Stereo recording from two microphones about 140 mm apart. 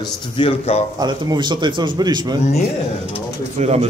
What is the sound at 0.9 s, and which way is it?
A man's voice, 30° right (ahead or behind).